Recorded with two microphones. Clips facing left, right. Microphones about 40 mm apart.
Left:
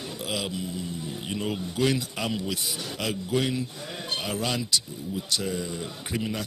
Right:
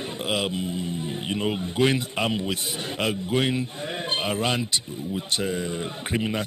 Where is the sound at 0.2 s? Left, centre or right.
Right.